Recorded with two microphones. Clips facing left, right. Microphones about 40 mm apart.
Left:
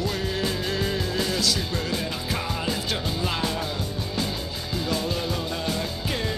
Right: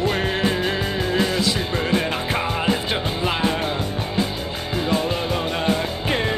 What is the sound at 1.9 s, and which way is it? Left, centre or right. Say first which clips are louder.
Music: right 7 dB; right.